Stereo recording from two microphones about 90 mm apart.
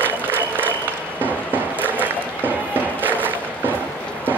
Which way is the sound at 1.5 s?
20° right (ahead or behind).